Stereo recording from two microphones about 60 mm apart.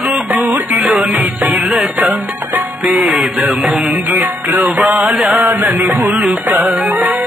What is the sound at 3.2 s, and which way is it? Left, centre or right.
Mantra, centre.